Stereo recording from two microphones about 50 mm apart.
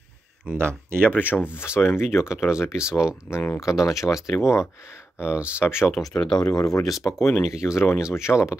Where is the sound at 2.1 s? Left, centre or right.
Left.